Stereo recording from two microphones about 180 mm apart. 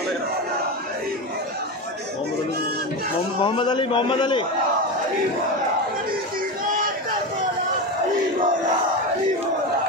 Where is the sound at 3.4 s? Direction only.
30° left (ahead or behind).